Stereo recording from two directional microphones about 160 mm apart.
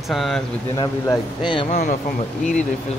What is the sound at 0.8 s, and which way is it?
Speech, 30° left (ahead or behind).